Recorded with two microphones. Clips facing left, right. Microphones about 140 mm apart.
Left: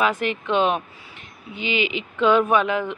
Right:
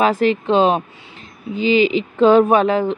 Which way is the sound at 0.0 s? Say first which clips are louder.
Right 7 dB; 30° right (ahead or behind).